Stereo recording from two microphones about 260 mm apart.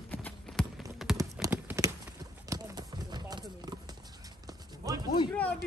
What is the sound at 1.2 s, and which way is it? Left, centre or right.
Clip-clop, centre.